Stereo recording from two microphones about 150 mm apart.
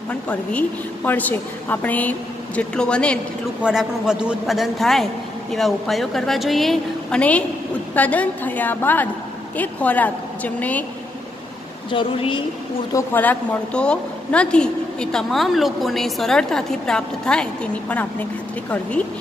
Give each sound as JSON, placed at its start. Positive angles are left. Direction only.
{"t": 0.1, "sound": "a woman's voice", "side_deg": 10}
{"t": 3.6, "sound": "a woman's voice", "side_deg": -5}
{"t": 11.9, "sound": "a woman's voice", "side_deg": 35}
{"t": 12.9, "sound": "a woman's voice", "side_deg": 10}